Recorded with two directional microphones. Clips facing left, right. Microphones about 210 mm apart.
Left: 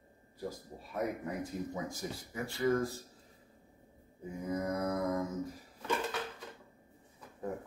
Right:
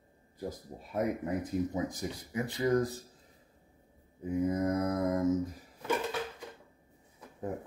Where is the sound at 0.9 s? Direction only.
20° right (ahead or behind).